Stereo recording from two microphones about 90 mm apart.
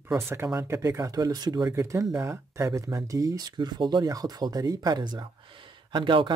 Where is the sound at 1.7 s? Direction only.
30° right (ahead or behind); by 5.2 s 50° right (ahead or behind).